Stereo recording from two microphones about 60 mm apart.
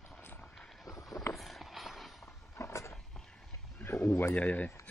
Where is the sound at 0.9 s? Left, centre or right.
Left.